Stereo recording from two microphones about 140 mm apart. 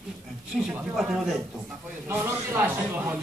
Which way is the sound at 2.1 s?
20° right (ahead or behind).